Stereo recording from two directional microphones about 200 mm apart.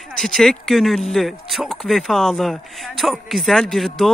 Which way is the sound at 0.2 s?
Centre (ahead or behind).